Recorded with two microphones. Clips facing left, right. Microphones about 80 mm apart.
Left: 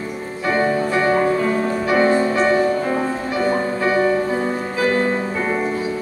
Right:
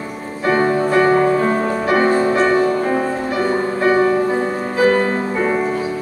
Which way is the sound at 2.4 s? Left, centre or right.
Centre.